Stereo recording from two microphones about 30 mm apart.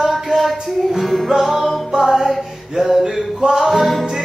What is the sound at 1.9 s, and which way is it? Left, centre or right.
Music, centre.